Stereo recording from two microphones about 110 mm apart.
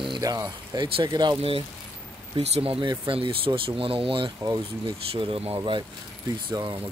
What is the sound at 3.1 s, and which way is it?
Speech, 55° right (ahead or behind).